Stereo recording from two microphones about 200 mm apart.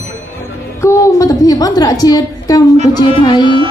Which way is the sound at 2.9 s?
25° left (ahead or behind).